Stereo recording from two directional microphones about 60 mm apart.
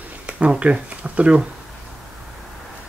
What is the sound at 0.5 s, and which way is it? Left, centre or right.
Speech, centre.